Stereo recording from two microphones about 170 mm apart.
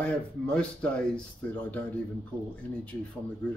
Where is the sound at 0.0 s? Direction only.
5° left (ahead or behind).